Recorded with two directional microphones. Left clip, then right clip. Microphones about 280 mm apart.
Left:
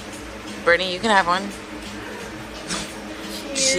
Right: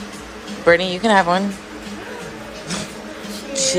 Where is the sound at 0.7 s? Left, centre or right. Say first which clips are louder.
Right 4 dB; centre.